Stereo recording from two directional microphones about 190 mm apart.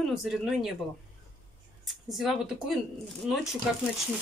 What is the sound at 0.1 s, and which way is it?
Speech, centre (ahead or behind).